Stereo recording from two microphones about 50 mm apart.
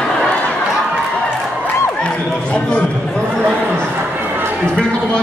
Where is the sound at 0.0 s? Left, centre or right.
Centre.